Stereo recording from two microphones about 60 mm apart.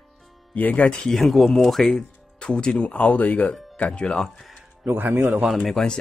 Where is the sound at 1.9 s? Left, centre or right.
Centre.